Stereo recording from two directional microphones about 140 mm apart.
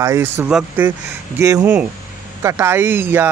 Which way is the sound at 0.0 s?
20° right (ahead or behind).